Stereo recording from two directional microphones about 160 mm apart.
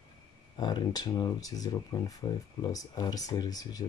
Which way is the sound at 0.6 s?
25° left (ahead or behind).